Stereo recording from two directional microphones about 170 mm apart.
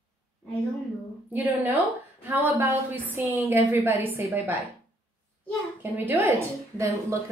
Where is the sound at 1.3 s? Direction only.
10° right (ahead or behind).